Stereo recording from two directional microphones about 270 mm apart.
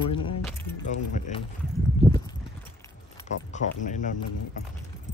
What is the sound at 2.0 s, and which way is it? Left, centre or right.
Clip-clop, left.